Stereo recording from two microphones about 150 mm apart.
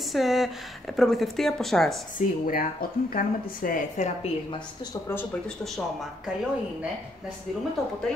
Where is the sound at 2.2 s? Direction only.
70° left (ahead or behind).